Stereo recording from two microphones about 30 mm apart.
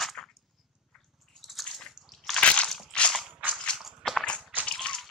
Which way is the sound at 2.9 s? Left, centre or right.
Left.